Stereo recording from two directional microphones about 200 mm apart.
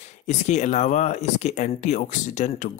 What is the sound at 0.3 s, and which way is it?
Speech, 35° left (ahead or behind).